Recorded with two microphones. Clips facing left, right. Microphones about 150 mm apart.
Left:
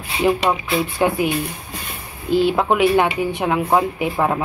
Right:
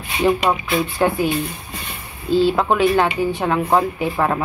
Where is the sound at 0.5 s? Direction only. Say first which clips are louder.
Even; centre (ahead or behind).